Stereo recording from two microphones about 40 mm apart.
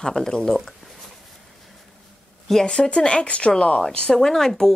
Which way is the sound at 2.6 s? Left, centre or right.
Left.